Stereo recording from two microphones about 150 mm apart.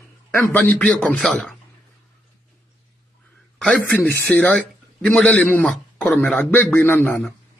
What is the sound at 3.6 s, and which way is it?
A man's voice, 10° left (ahead or behind).